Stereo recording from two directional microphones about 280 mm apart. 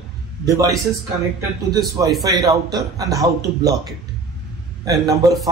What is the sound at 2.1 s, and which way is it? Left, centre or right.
Speech, centre.